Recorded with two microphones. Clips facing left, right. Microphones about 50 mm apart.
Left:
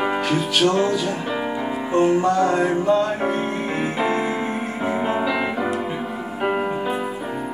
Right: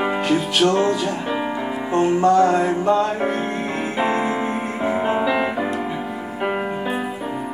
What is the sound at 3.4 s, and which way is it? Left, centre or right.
Music, centre.